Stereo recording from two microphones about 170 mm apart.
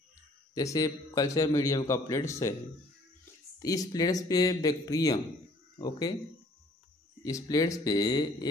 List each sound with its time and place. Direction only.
0.6 s a man's voice: 20° left (ahead or behind)
3.5 s a man's voice: 20° left (ahead or behind)
7.2 s a man's voice: 20° left (ahead or behind)